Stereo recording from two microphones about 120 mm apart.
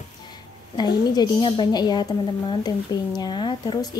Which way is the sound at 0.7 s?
35° left (ahead or behind).